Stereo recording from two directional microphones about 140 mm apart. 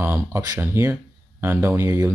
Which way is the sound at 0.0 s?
15° right (ahead or behind).